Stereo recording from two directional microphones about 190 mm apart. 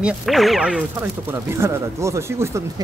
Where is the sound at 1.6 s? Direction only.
15° right (ahead or behind).